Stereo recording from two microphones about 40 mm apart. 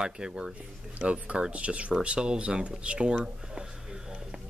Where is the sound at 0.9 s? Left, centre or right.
Right.